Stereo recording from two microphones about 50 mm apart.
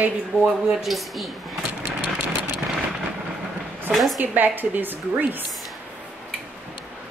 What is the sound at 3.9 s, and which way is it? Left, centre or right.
Speech, centre.